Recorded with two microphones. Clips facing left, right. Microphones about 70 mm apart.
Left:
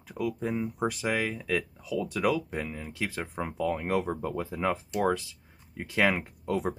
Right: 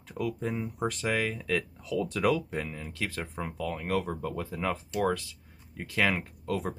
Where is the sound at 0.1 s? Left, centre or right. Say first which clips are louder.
Left 1 dB; centre.